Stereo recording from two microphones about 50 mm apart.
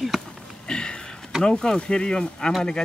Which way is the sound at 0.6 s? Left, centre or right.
Centre.